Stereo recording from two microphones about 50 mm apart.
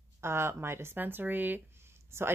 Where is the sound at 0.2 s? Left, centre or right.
Right.